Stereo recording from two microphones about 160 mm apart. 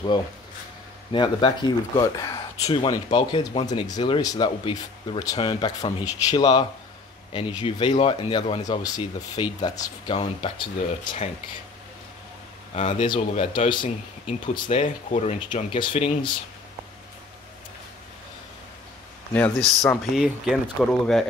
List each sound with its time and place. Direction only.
1.1 s speech: 30° left (ahead or behind)
12.7 s speech: 45° left (ahead or behind)
19.3 s speech: 5° left (ahead or behind)